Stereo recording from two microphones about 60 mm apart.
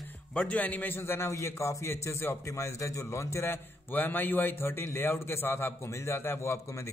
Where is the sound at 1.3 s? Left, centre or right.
Left.